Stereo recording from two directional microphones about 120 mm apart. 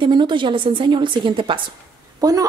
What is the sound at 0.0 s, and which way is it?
A woman's voice, 40° right (ahead or behind).